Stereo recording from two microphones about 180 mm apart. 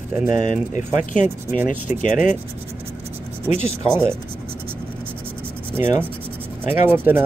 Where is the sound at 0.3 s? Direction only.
45° left (ahead or behind).